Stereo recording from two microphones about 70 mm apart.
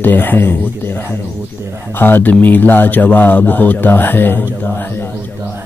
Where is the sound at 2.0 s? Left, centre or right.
Left.